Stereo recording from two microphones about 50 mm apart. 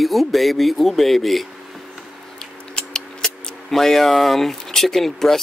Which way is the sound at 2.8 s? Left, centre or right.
Centre.